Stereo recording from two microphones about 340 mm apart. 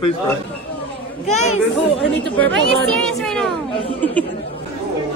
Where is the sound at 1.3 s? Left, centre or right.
Left.